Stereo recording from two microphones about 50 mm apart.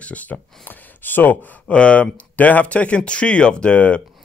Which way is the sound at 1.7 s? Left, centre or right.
Left.